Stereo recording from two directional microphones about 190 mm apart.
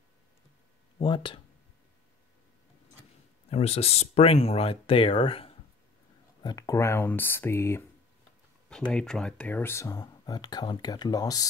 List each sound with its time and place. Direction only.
0.9 s speech: 25° left (ahead or behind)
3.4 s speech: 30° left (ahead or behind)